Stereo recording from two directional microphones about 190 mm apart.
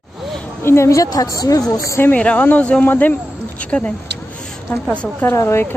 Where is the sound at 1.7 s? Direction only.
15° left (ahead or behind).